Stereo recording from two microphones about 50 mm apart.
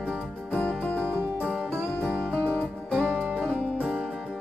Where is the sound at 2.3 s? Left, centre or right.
Left.